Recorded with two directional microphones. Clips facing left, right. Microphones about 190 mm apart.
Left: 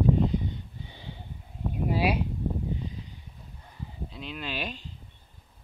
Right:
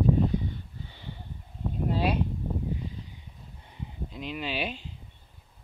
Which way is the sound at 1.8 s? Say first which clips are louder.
Left 1 dB; 10° left (ahead or behind).